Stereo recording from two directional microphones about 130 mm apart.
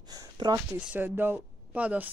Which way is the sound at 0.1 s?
30° right (ahead or behind).